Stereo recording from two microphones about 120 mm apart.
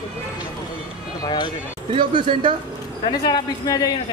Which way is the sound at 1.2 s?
40° left (ahead or behind).